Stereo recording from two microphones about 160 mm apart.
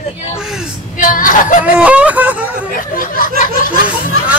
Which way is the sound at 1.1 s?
55° left (ahead or behind).